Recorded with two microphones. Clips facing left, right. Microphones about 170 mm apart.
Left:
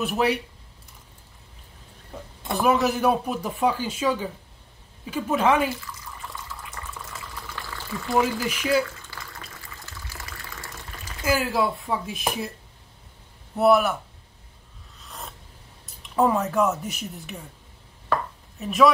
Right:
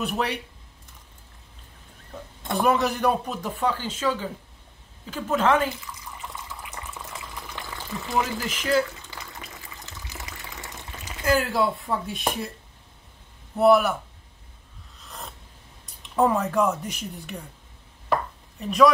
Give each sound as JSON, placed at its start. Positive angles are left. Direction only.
{"t": 0.0, "sound": "speech", "side_deg": 5}
{"t": 2.4, "sound": "speech", "side_deg": 0}
{"t": 5.8, "sound": "water", "side_deg": -20}
{"t": 8.5, "sound": "speech", "side_deg": 10}
{"t": 9.0, "sound": "water", "side_deg": -20}
{"t": 11.2, "sound": "speech", "side_deg": 5}
{"t": 13.6, "sound": "speech", "side_deg": 0}
{"t": 15.0, "sound": "a sound", "side_deg": 0}
{"t": 15.8, "sound": "speech", "side_deg": 0}
{"t": 18.6, "sound": "speech", "side_deg": 5}